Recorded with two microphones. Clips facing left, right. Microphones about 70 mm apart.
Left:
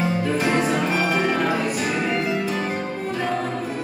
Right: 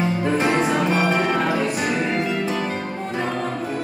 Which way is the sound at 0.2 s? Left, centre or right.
Centre.